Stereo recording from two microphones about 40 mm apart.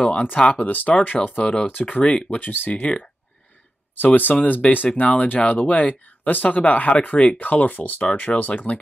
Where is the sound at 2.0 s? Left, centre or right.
Left.